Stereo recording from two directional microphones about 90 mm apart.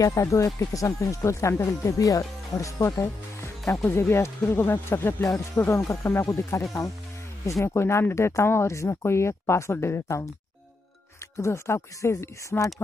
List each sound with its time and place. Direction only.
0.0 s speech: 35° left (ahead or behind)
11.3 s speech: 30° left (ahead or behind)